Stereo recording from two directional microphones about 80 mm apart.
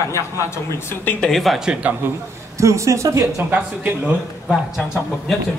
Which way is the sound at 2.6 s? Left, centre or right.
Right.